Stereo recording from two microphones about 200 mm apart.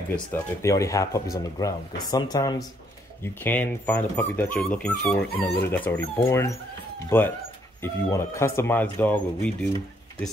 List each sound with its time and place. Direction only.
0.3 s speech: 15° left (ahead or behind)
3.4 s speech: 10° left (ahead or behind)